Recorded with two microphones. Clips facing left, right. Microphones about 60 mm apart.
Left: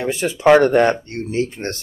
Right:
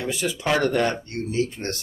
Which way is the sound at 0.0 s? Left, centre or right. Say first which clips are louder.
Left 9 dB; left.